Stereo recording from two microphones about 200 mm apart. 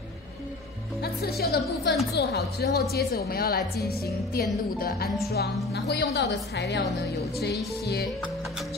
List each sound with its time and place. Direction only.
1.4 s a woman's voice: 50° left (ahead or behind)